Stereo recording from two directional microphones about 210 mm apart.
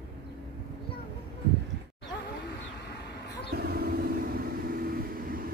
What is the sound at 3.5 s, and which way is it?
Vehicle, 50° right (ahead or behind).